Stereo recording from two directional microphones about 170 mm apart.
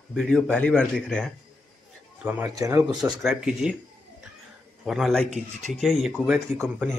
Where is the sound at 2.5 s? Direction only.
20° right (ahead or behind).